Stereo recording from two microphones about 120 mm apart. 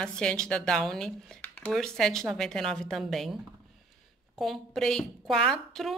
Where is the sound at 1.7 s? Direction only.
5° left (ahead or behind).